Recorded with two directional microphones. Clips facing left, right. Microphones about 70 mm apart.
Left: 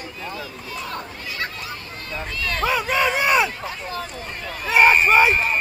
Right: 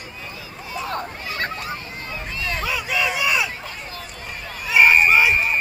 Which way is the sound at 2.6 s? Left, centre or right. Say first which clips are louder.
Left 5 dB; left.